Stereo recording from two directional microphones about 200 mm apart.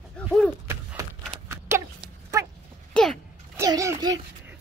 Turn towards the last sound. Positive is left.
turn(degrees=-20)  # may be behind; listen again after turning